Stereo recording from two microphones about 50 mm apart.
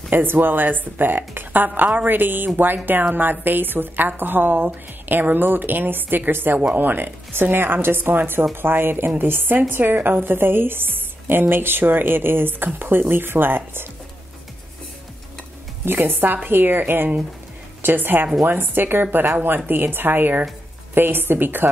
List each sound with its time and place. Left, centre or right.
0.1 s speech: right
15.8 s a woman's voice: right